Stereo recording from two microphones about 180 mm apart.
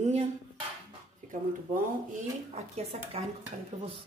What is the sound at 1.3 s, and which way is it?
Speech, 45° right (ahead or behind).